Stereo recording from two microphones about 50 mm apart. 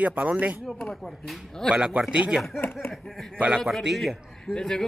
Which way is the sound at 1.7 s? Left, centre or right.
Right.